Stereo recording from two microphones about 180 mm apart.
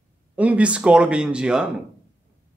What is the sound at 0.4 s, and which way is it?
Speech, 5° right (ahead or behind).